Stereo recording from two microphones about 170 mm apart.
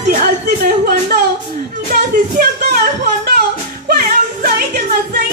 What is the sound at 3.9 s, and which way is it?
Music, 60° right (ahead or behind).